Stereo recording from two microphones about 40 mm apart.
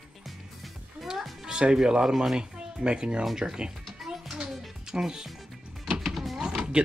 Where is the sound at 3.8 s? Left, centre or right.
Centre.